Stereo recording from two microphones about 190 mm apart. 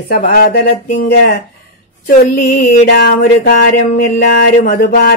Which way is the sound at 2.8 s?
60° left (ahead or behind).